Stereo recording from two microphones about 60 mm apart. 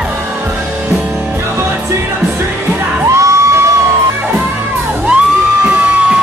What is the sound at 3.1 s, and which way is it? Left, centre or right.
Crowd, right.